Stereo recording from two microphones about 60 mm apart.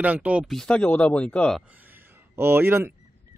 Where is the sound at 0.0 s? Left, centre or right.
Right.